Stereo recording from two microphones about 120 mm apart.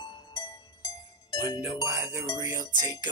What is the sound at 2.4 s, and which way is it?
Music, 25° right (ahead or behind).